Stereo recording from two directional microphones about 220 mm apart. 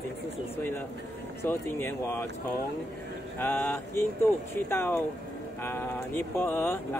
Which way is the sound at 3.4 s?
10° left (ahead or behind).